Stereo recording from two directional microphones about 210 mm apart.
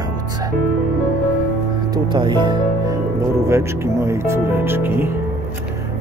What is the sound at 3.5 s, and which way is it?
Speech, 15° right (ahead or behind).